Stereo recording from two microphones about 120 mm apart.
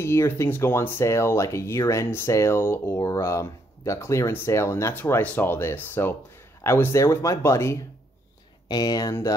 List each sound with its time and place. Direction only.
0.0 s speech: 20° left (ahead or behind)
8.6 s speech: 35° left (ahead or behind)